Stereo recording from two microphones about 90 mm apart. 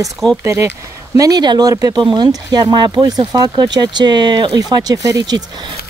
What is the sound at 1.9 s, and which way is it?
Speech, 60° right (ahead or behind).